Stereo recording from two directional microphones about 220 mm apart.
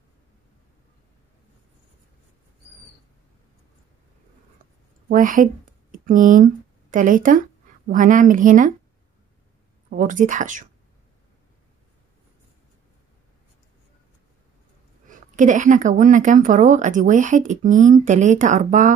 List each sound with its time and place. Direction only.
5.0 s speech: 35° right (ahead or behind)
9.8 s a woman's voice: 35° right (ahead or behind)
15.0 s a woman's voice: 35° right (ahead or behind)